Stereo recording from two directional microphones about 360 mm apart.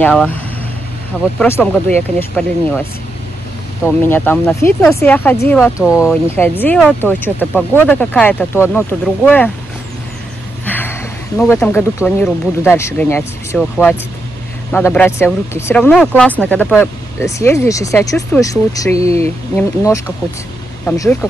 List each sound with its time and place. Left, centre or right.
0.0 s speech: centre
1.4 s speech: centre
3.8 s speech: centre
10.6 s a sound: centre
12.0 s speech: centre
18.9 s speech: centre
19.5 s speech: centre